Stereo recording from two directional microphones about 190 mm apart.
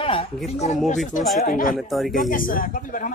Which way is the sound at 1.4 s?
45° left (ahead or behind).